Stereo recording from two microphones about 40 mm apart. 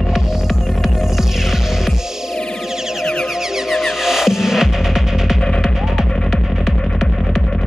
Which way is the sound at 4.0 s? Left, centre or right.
Centre.